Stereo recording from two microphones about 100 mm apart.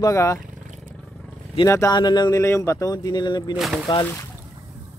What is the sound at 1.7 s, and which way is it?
Speech, 30° left (ahead or behind).